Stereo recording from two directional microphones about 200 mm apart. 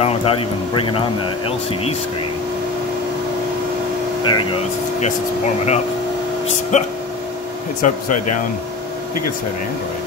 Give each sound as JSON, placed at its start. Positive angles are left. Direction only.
{"t": 0.0, "sound": "speech", "side_deg": 30}
{"t": 4.3, "sound": "speech", "side_deg": 25}
{"t": 5.0, "sound": "speech", "side_deg": 35}